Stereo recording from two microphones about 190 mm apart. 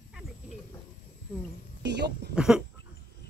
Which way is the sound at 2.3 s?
5° right (ahead or behind).